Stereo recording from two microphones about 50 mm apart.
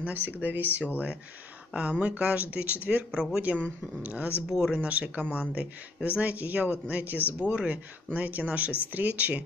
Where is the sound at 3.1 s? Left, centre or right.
Centre.